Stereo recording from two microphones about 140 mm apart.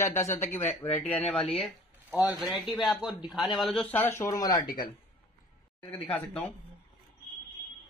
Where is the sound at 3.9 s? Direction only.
20° left (ahead or behind).